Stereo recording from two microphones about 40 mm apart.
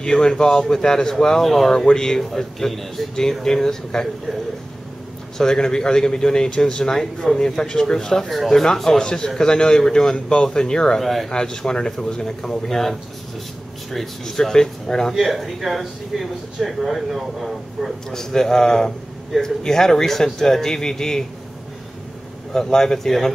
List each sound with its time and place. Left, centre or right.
0.0 s speech: centre
5.4 s speech: centre
11.0 s speech: centre
11.2 s speech: centre
13.9 s speech: centre
15.1 s speech: centre
18.1 s speech: centre
22.5 s speech: centre